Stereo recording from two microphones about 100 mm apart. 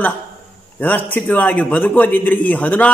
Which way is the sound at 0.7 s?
15° left (ahead or behind).